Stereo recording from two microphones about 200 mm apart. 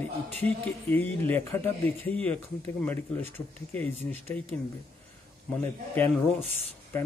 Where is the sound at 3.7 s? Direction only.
10° left (ahead or behind).